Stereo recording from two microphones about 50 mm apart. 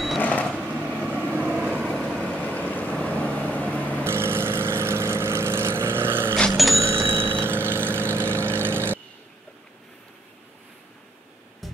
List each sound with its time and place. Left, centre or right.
0.2 s sewing machine: left
0.6 s vehicle: right
2.1 s vehicle: left
2.4 s vehicle: left
4.0 s vehicle: right
6.5 s a sound: centre
6.8 s bicycle bell: right
11.6 s music: centre